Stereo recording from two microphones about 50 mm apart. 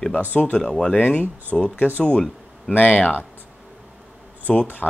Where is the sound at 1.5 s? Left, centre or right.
Left.